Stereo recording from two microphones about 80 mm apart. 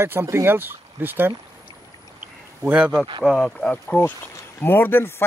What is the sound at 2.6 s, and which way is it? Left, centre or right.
Speech, centre.